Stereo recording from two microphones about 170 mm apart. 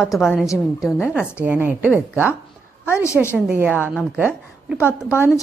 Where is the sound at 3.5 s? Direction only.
10° right (ahead or behind).